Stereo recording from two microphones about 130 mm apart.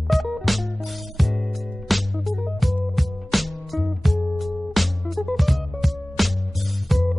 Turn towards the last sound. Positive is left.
turn(degrees=0)  # may be behind; listen again after turning